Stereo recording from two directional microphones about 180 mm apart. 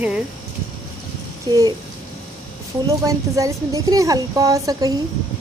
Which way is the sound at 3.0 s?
20° right (ahead or behind).